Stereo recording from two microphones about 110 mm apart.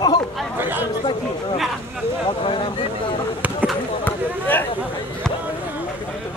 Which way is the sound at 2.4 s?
50° left (ahead or behind).